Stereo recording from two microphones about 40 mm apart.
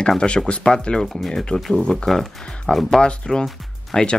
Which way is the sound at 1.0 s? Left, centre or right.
Centre.